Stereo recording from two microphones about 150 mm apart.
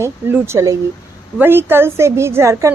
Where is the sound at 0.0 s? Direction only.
15° right (ahead or behind).